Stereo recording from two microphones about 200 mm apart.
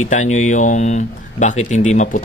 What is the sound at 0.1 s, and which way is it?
Speech, 35° left (ahead or behind).